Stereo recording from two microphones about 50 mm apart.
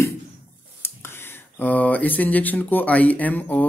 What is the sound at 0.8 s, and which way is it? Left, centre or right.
Whispering, left.